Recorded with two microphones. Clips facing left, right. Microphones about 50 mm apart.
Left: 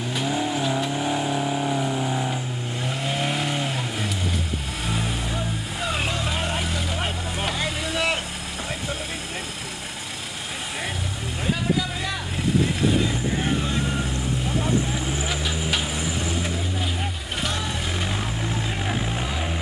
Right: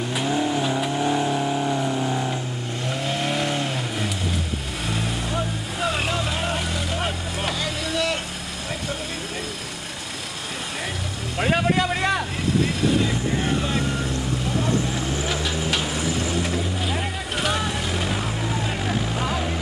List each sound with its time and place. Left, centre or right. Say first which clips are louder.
0.1 s vehicle: right 2 dB; centre
7.5 s vehicle: even; centre
11.4 s vehicle: right 4 dB; right
14.6 s vehicle: even; centre
17.9 s vehicle: right 2 dB; centre